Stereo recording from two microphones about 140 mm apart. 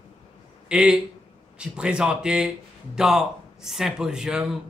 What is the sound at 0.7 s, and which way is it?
A man's voice, 5° right (ahead or behind).